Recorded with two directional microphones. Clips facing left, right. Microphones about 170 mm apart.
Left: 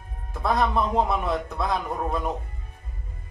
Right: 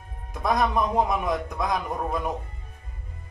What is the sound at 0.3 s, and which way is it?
A man's voice, 15° right (ahead or behind).